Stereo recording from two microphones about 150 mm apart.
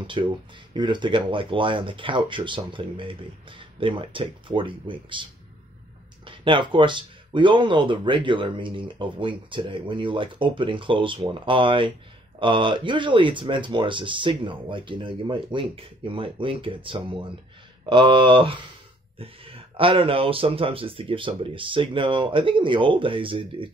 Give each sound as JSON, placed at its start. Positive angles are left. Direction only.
{"t": 0.0, "sound": "speech", "side_deg": -35}
{"t": 6.2, "sound": "speech", "side_deg": -35}